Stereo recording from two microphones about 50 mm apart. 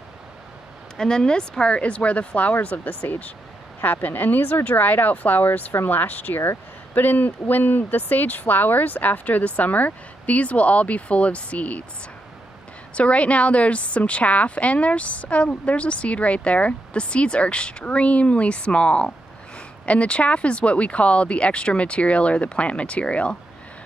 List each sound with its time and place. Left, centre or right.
0.9 s a woman's voice: centre
12.9 s a woman's voice: left